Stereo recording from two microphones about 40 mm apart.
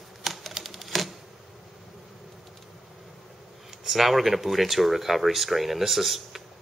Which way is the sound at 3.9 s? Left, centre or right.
Centre.